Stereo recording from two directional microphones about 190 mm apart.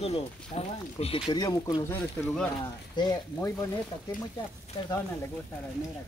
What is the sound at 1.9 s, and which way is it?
Speech, 5° left (ahead or behind).